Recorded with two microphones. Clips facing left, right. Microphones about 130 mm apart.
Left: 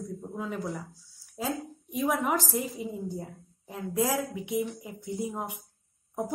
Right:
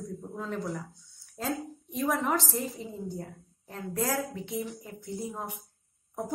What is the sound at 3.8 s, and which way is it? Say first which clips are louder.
Speech: left 3 dB; 15° left (ahead or behind).